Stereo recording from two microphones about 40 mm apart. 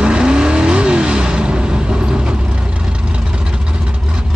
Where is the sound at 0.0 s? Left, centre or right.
Right.